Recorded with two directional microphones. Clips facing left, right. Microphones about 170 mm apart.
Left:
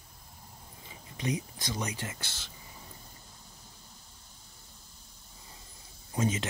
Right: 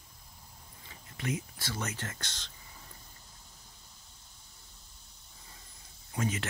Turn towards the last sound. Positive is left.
turn(degrees=20)  # may be behind; listen again after turning